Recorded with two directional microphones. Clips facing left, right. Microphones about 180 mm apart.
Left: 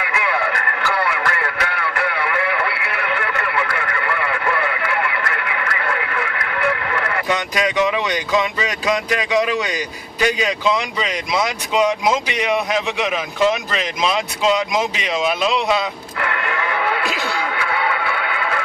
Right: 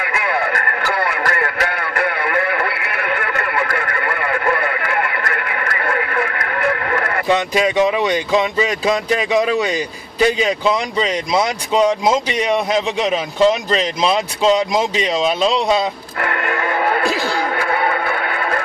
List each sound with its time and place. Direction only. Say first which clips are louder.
0.0 s music: right 1 dB; 45° right (ahead or behind)
7.3 s speech: right 5 dB; 30° right (ahead or behind); by 17.0 s 45° right (ahead or behind)
17.0 s music: right 4 dB; 35° right (ahead or behind)